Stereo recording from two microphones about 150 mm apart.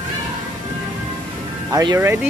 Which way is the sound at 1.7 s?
20° right (ahead or behind).